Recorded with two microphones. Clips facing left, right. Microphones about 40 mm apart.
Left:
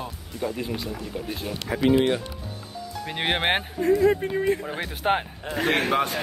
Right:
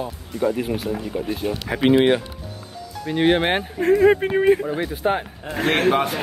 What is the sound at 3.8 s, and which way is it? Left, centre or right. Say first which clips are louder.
Speech: right 5 dB; right.